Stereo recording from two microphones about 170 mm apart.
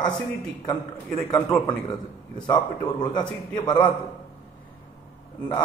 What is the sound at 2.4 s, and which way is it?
A man's voice, 25° left (ahead or behind).